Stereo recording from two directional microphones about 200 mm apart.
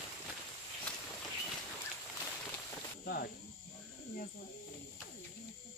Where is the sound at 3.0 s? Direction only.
50° left (ahead or behind).